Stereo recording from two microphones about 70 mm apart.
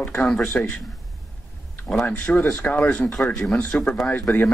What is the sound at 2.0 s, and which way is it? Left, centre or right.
Speech, left.